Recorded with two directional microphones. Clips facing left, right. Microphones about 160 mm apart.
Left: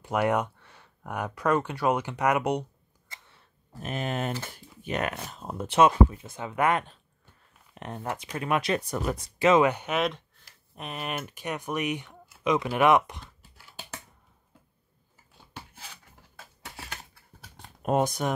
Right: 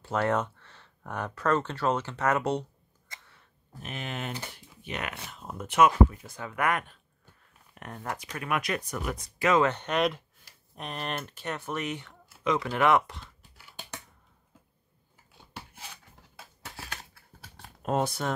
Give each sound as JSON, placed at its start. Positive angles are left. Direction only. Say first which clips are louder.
{"t": 0.0, "sound": "speech", "louder": "left 2 dB", "side_deg": 15}
{"t": 3.1, "sound": "tick-tock", "louder": "even", "side_deg": 30}
{"t": 3.8, "sound": "speech", "louder": "left 6 dB", "side_deg": 40}
{"t": 9.7, "sound": "speech", "louder": "even", "side_deg": 10}
{"t": 13.4, "sound": "a sound", "louder": "left 1 dB", "side_deg": 5}
{"t": 17.8, "sound": "speech", "louder": "left 3 dB", "side_deg": 15}